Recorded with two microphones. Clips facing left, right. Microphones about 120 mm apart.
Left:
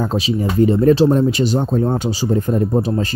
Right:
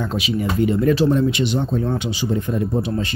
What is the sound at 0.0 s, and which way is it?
Speech, 35° left (ahead or behind).